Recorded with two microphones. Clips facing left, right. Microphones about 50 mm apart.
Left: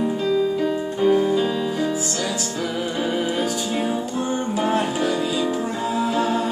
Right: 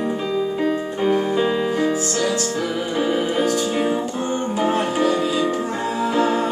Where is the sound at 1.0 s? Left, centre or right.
Centre.